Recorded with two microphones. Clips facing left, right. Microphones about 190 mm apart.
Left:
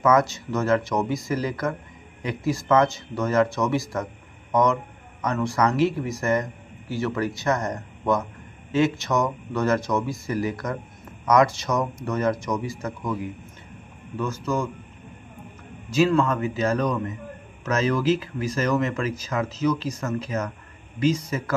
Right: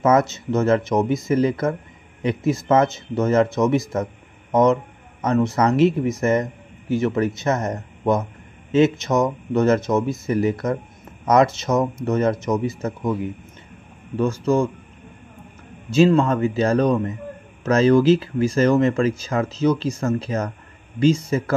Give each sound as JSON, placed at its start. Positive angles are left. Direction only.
{"t": 0.0, "sound": "a man's voice", "side_deg": -25}
{"t": 15.9, "sound": "a man's voice", "side_deg": -25}